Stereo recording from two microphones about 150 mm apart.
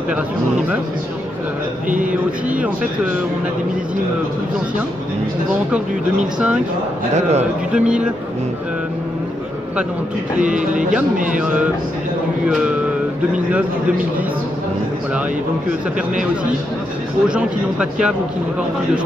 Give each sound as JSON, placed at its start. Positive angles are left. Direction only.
{"t": 7.2, "sound": "speech", "side_deg": -45}
{"t": 7.7, "sound": "speech", "side_deg": -5}
{"t": 17.3, "sound": "speech", "side_deg": -5}